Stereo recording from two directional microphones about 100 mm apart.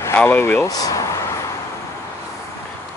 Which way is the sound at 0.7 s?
40° left (ahead or behind).